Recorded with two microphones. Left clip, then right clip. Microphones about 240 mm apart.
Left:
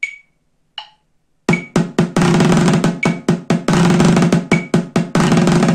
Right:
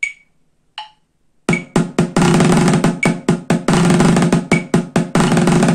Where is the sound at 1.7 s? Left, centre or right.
Centre.